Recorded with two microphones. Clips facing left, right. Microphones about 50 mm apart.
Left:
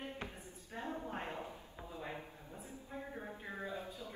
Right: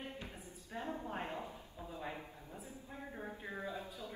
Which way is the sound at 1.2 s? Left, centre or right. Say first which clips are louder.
Right 1 dB; left.